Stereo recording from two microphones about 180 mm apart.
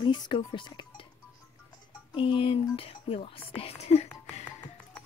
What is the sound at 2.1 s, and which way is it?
Speech, 30° left (ahead or behind).